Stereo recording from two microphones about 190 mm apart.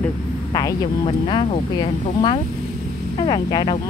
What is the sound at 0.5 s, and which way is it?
Speech, 25° left (ahead or behind).